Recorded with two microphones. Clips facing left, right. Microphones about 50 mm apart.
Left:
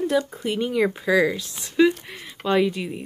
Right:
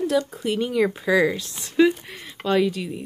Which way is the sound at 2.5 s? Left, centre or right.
Centre.